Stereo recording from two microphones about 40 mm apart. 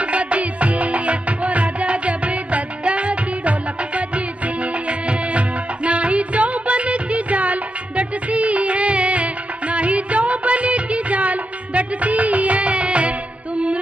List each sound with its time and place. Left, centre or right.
0.0 s music: right